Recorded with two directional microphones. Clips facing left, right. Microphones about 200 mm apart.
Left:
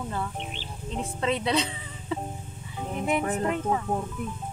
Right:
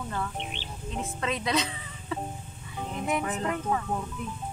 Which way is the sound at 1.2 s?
30° left (ahead or behind).